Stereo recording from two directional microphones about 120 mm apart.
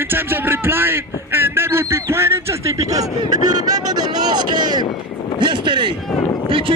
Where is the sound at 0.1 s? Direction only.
20° right (ahead or behind).